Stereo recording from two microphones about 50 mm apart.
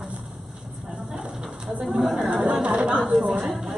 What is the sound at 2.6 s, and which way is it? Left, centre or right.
Speech, right.